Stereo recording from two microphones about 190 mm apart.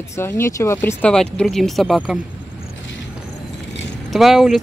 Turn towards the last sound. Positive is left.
turn(degrees=0)  # may be behind; listen again after turning